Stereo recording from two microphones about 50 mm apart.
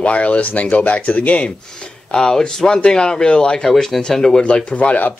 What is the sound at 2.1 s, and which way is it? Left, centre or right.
Speech, centre.